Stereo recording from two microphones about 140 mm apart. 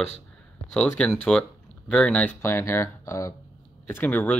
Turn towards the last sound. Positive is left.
turn(degrees=10)  # may be behind; listen again after turning